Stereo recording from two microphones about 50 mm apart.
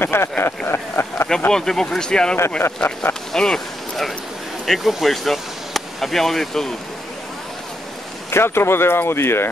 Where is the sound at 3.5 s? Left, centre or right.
Centre.